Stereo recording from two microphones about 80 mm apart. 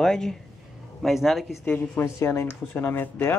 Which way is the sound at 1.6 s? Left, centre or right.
Left.